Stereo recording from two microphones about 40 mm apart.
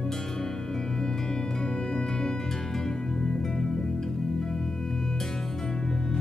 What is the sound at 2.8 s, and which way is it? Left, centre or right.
Music, centre.